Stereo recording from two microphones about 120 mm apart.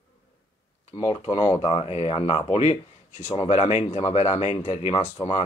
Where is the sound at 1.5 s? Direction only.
60° left (ahead or behind); by 5.0 s 80° left.